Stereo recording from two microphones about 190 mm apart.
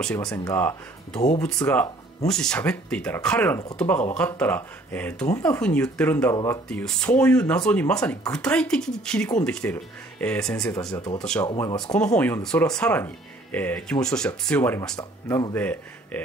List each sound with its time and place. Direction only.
0.0 s speech: 5° left (ahead or behind)
10.9 s speech: 20° left (ahead or behind)
11.7 s speech: 5° left (ahead or behind)